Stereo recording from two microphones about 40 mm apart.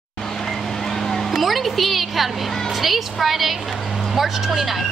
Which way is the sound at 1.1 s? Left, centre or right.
Centre.